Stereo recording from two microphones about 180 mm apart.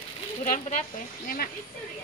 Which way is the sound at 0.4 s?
40° left (ahead or behind).